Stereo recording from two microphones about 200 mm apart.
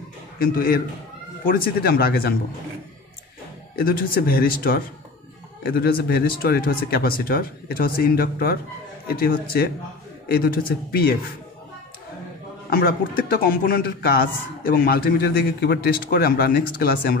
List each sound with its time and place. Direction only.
0.4 s a man's voice: 50° left (ahead or behind)
3.7 s a man's voice: 45° left (ahead or behind)
12.6 s a man's voice: 50° left (ahead or behind)